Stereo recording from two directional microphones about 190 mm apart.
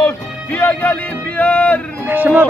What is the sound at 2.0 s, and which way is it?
Music, 10° right (ahead or behind).